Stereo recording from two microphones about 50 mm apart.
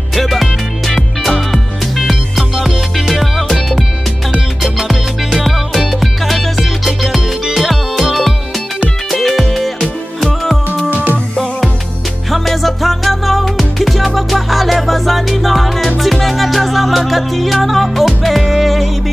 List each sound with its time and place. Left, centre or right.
0.1 s music: centre
4.7 s music: centre
10.9 s music: right
12.3 s music: centre